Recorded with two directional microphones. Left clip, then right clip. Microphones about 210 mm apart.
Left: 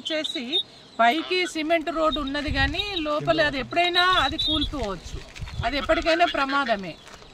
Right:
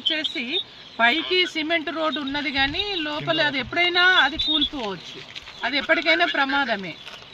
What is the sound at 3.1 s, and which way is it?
Speech, 10° left (ahead or behind).